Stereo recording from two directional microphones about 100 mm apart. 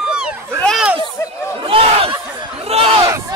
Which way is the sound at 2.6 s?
90° right.